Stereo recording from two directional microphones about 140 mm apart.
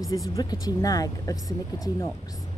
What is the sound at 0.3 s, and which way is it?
Speech, 25° left (ahead or behind).